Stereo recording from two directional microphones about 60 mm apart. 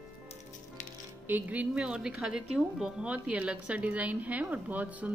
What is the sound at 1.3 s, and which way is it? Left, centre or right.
A woman's voice, right.